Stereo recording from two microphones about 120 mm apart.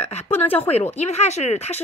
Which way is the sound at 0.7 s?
65° left (ahead or behind).